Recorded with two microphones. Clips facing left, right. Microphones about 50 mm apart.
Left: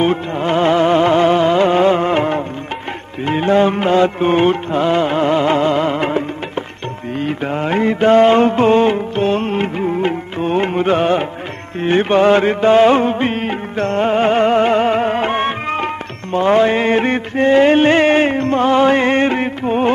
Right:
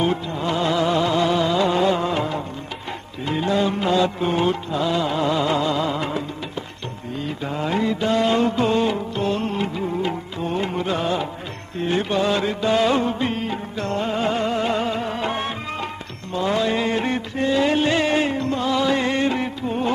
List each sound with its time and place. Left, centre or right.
0.0 s music: left